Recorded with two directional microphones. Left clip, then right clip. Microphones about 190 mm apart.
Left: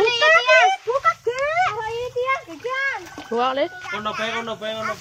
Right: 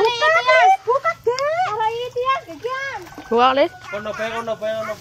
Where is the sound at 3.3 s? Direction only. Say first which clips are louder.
Right 6 dB; 35° right (ahead or behind).